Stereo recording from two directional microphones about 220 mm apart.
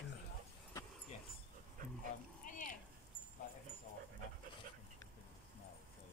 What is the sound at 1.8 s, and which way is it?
Dog, 40° right (ahead or behind).